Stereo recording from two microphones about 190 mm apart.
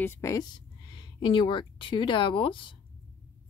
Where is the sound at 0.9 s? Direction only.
25° left (ahead or behind).